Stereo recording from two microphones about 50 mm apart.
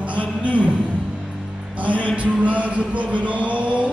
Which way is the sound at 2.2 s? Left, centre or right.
Right.